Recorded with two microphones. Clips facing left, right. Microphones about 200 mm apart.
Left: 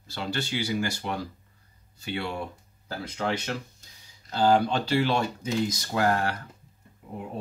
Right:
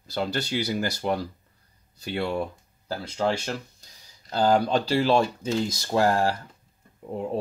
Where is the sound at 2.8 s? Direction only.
30° right (ahead or behind).